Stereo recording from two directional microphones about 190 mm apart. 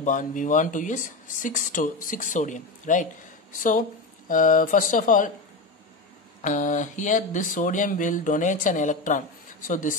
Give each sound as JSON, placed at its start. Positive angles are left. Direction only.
{"t": 0.0, "sound": "speech", "side_deg": 40}
{"t": 4.3, "sound": "speech", "side_deg": 45}
{"t": 6.4, "sound": "speech", "side_deg": 40}